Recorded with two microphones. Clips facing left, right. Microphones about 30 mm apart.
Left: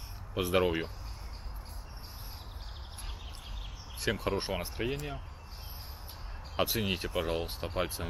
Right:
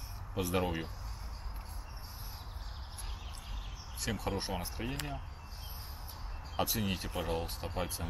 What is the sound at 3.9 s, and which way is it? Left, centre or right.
Speech, centre.